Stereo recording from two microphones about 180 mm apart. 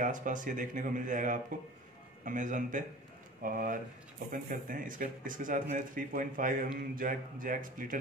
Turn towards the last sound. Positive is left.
turn(degrees=-50)  # may be behind; listen again after turning